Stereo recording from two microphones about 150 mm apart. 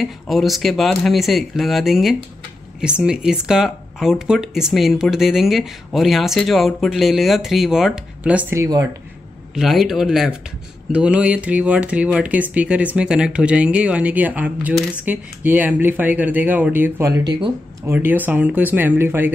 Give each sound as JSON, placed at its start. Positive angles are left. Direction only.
{"t": 0.0, "sound": "speech", "side_deg": 0}
{"t": 8.5, "sound": "speech", "side_deg": -20}
{"t": 9.5, "sound": "speech", "side_deg": 0}
{"t": 17.8, "sound": "speech", "side_deg": -15}